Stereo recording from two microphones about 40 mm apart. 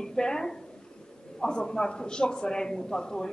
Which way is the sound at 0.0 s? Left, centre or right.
Centre.